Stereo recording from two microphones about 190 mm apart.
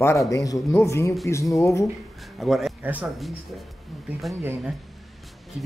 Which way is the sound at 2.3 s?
Centre (ahead or behind).